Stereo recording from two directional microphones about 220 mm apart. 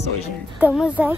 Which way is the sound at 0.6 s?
5° right (ahead or behind).